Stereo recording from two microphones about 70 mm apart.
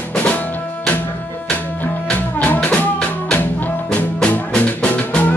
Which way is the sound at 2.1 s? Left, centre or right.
Left.